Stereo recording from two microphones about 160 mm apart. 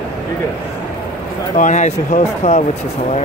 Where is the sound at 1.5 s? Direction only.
50° left (ahead or behind).